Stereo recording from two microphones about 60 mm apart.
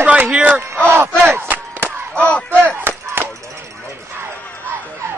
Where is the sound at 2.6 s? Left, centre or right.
Right.